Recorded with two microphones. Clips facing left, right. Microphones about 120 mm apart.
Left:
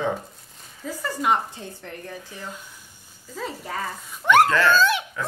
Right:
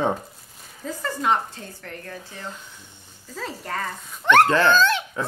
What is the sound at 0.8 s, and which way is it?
A woman's voice, 10° left (ahead or behind).